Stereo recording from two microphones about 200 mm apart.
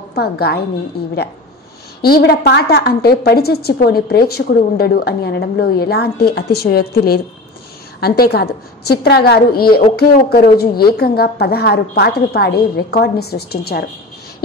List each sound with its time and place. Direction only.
0.1 s a woman's voice: 50° left (ahead or behind)
2.0 s a woman's voice: 50° left (ahead or behind)